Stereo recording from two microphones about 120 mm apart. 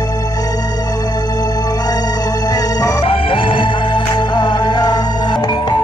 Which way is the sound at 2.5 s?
30° left (ahead or behind).